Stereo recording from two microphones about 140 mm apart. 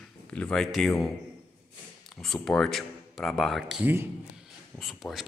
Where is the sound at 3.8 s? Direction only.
15° right (ahead or behind).